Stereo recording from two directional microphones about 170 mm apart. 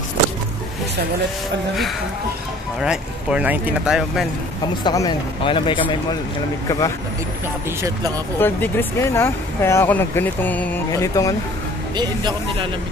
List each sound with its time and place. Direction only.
2.8 s speech: 5° right (ahead or behind)
4.8 s speech: 25° left (ahead or behind)
6.7 s speech: 20° left (ahead or behind)
8.4 s speech: 10° left (ahead or behind)
11.9 s speech: 25° right (ahead or behind)